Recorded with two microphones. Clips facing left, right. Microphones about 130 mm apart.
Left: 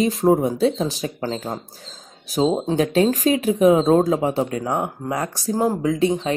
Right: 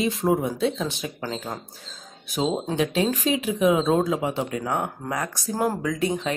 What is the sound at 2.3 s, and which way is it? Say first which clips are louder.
Speech: left 6 dB; 35° left (ahead or behind).